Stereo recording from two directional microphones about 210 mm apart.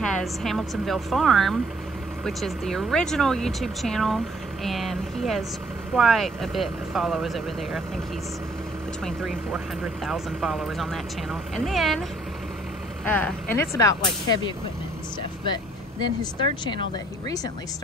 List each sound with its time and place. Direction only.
0.0 s speech: centre (ahead or behind)
9.0 s speech: centre (ahead or behind)
13.0 s speech: 5° left (ahead or behind)
15.5 s speech: 20° left (ahead or behind)